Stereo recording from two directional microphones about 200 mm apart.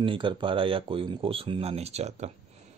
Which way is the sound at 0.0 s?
25° right (ahead or behind).